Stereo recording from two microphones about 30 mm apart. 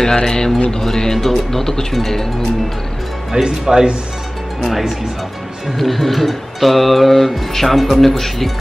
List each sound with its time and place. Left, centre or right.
0.0 s speech: left
3.4 s speech: right
4.6 s music: centre